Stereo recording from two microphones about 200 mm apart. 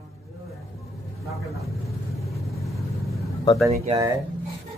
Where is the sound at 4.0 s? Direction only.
15° right (ahead or behind).